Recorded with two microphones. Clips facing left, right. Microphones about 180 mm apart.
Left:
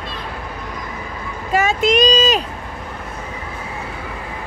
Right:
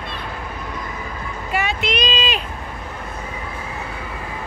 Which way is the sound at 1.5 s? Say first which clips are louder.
Left 7 dB; 45° left (ahead or behind).